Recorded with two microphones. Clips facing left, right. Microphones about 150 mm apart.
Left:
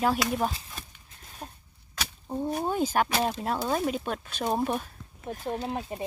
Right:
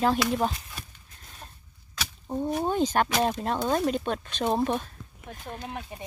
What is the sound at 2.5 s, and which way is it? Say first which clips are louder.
Speech: right 2 dB; 10° left (ahead or behind).